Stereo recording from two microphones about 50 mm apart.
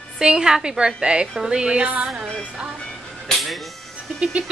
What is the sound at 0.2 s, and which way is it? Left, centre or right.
A woman's voice, centre.